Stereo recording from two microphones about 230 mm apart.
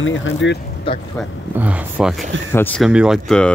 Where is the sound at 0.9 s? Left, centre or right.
Left.